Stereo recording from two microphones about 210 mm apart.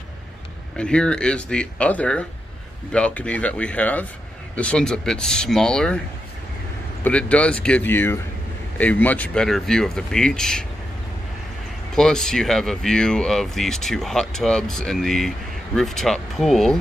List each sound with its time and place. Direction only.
0.7 s speech: 5° left (ahead or behind)
7.0 s speech: 5° left (ahead or behind)
11.9 s speech: centre (ahead or behind)